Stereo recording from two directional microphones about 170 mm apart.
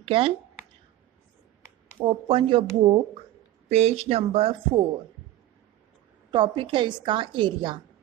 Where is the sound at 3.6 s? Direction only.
40° right (ahead or behind).